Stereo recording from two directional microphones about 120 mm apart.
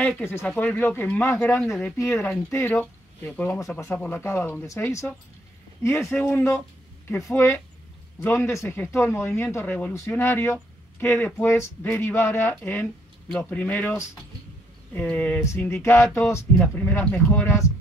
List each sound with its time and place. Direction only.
0.2 s speech: 20° left (ahead or behind)